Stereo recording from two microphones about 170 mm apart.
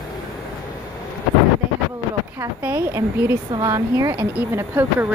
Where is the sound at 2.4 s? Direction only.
15° right (ahead or behind).